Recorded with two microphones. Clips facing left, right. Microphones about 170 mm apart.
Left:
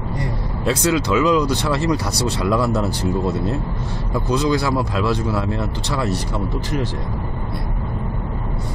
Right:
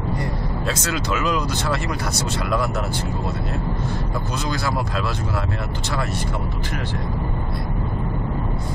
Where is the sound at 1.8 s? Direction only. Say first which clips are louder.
Left 6 dB; 35° left (ahead or behind).